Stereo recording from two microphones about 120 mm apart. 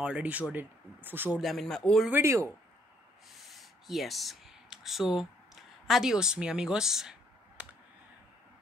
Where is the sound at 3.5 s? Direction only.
Centre (ahead or behind).